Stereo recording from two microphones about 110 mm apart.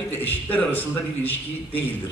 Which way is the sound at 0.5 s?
15° left (ahead or behind).